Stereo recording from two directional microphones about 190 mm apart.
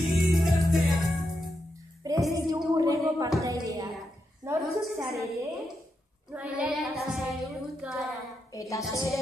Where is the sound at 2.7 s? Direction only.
20° right (ahead or behind).